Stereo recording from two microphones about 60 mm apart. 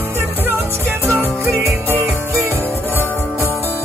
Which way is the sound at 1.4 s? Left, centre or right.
Right.